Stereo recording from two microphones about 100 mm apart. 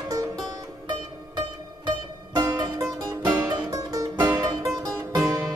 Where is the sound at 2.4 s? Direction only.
45° right (ahead or behind).